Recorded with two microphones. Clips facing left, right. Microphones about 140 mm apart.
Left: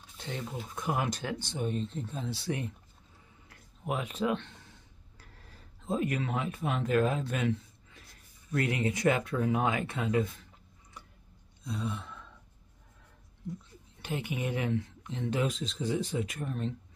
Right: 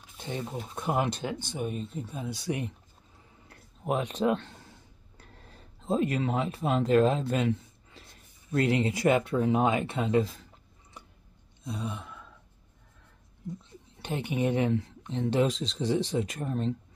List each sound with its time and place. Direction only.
0.2 s speech: 15° right (ahead or behind)
1.5 s speech: 10° right (ahead or behind)
3.4 s speech: 35° right (ahead or behind)
11.6 s gasp: 20° right (ahead or behind)
13.9 s speech: 30° right (ahead or behind)